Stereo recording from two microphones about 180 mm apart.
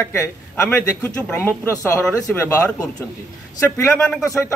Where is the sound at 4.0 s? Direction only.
5° left (ahead or behind).